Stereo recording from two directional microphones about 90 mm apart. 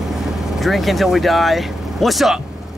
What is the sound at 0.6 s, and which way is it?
Speech, centre (ahead or behind).